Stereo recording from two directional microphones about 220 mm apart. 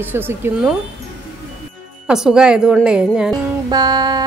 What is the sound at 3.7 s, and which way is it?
Speech, 20° right (ahead or behind).